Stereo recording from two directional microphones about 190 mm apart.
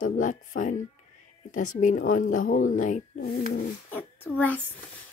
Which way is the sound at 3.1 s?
55° left (ahead or behind).